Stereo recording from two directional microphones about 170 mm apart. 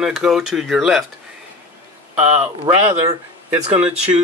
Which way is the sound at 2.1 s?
10° right (ahead or behind).